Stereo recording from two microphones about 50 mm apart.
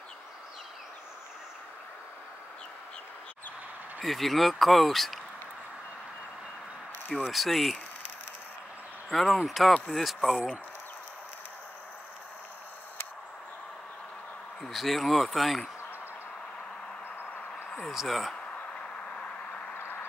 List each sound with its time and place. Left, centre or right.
4.0 s speech: centre
7.2 s speech: centre
9.1 s speech: centre
14.6 s speech: centre
17.8 s speech: centre
18.3 s a sound: left
19.7 s a sound: left